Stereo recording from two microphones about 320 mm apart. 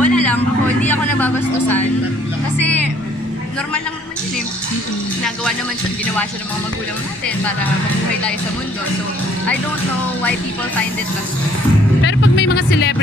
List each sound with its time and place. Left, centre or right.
0.0 s speech: centre
2.5 s vehicle: centre
12.0 s speech: left